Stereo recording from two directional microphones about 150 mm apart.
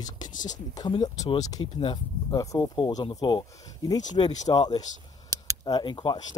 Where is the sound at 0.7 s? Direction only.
25° left (ahead or behind).